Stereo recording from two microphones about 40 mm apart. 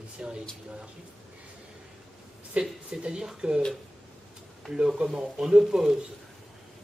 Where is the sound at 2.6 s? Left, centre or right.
Right.